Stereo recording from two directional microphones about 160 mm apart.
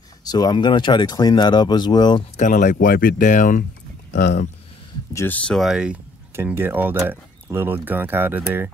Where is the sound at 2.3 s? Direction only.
50° left (ahead or behind).